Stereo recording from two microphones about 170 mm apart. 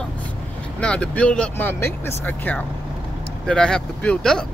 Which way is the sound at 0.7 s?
5° left (ahead or behind).